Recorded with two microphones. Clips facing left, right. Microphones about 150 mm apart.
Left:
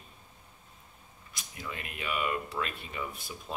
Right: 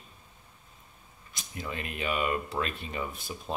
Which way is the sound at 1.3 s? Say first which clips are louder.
Right 4 dB; 30° right (ahead or behind).